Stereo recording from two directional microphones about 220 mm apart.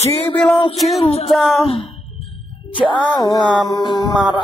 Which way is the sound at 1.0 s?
25° left (ahead or behind).